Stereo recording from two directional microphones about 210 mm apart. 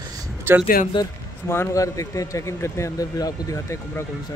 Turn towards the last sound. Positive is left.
turn(degrees=15)  # may be behind; listen again after turning